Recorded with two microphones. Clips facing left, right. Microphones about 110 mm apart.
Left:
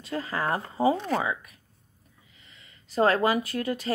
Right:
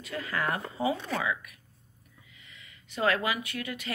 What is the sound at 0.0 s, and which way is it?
Speech, 30° left (ahead or behind).